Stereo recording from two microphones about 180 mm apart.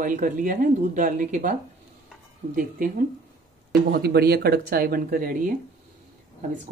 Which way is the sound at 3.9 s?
60° right (ahead or behind).